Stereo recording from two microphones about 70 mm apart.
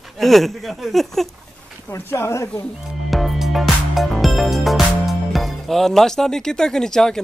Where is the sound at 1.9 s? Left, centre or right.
Left.